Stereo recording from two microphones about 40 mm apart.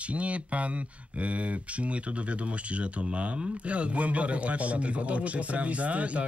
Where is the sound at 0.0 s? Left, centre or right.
Right.